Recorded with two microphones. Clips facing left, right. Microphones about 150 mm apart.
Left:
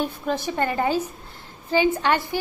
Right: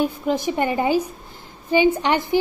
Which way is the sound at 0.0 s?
15° right (ahead or behind).